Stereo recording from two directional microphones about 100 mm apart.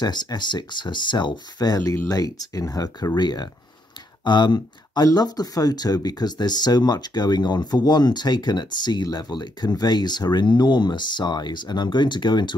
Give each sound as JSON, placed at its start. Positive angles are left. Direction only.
{"t": 0.0, "sound": "speech", "side_deg": 45}